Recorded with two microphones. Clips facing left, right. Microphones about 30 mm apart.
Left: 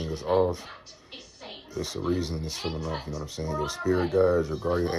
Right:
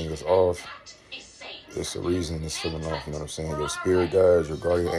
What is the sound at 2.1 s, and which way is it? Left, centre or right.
Speech, right.